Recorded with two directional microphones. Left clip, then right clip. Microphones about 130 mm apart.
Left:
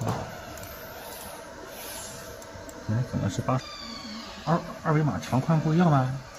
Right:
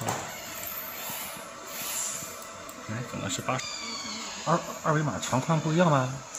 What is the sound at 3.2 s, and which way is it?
Speech, 40° left (ahead or behind).